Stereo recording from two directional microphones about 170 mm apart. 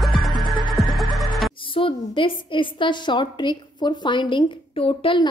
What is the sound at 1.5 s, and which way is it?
A woman's voice, 30° left (ahead or behind).